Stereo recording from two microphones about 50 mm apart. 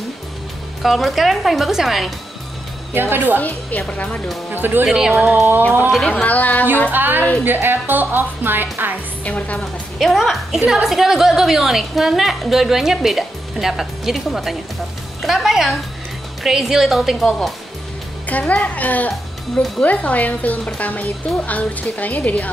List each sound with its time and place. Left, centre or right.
0.8 s a woman's voice: centre
2.9 s a woman's voice: right
3.3 s speech: left
4.5 s speech: right
4.8 s a woman's voice: centre
5.9 s speech: centre
6.2 s speech: left
6.9 s speech: right
9.2 s speech: left
9.9 s a woman's voice: centre
18.3 s speech: left